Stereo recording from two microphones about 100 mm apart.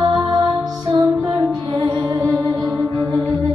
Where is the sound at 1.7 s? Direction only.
50° right (ahead or behind).